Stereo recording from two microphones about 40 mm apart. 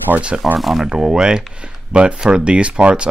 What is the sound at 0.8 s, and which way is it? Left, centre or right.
Speech, right.